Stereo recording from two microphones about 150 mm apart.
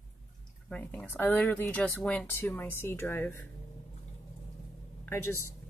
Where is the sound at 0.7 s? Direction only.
10° left (ahead or behind).